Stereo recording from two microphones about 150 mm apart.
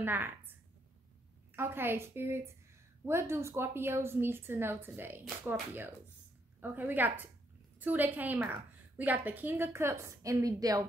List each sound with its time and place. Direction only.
0.0 s a woman's voice: 15° right (ahead or behind)